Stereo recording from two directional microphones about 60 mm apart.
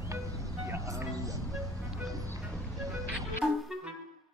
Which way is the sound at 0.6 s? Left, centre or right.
Right.